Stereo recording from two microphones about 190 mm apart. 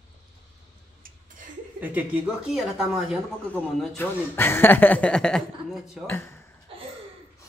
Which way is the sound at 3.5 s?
10° left (ahead or behind).